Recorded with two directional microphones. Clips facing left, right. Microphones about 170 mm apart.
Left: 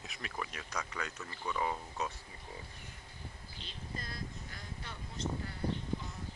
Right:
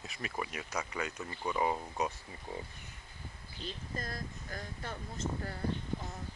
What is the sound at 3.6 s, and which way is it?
Speech, 45° right (ahead or behind).